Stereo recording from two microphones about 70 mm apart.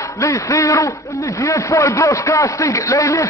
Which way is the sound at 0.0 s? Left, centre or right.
Left.